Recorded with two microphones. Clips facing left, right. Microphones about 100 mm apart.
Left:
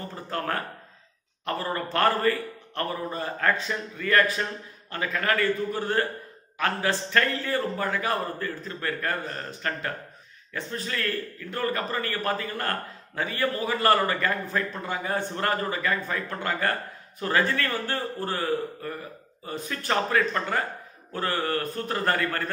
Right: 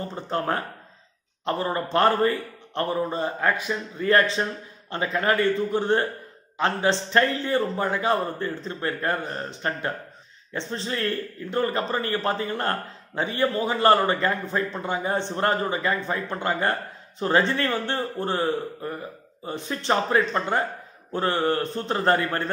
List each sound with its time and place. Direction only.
0.1 s a man's voice: 20° right (ahead or behind)
3.9 s a man's voice: 25° right (ahead or behind)